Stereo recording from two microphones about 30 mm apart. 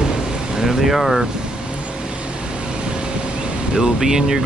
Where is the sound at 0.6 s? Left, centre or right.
Centre.